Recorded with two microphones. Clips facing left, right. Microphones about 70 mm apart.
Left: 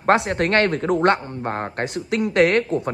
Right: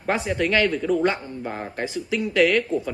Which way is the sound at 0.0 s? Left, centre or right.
Left.